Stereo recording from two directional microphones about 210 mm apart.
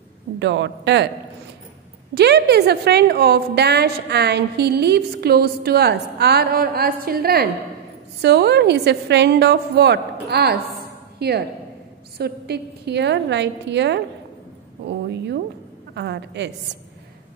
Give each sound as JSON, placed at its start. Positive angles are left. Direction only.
{"t": 0.4, "sound": "a woman's voice", "side_deg": -55}
{"t": 2.1, "sound": "a woman's voice", "side_deg": -50}